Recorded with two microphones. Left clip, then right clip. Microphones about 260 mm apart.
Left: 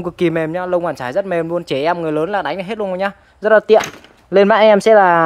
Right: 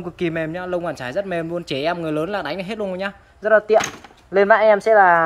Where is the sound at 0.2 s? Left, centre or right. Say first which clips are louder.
Left 6 dB; centre.